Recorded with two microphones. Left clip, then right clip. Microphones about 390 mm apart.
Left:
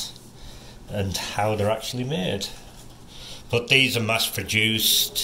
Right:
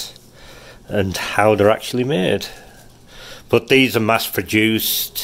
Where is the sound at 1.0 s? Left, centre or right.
Centre.